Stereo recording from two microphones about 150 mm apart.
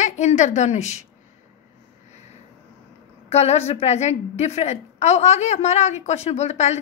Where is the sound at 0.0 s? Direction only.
50° left (ahead or behind).